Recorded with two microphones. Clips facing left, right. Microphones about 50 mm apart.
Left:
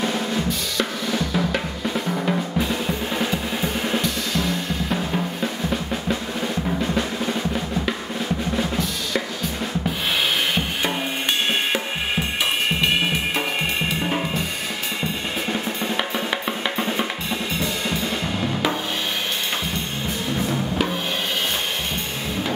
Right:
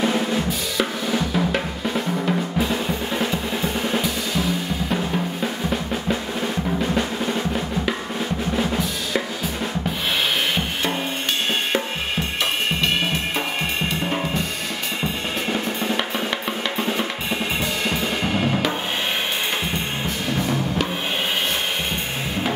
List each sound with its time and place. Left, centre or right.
0.0 s drum: centre
13.8 s drum kit: centre
15.5 s drum: centre
16.7 s drum kit: centre
17.3 s drum kit: right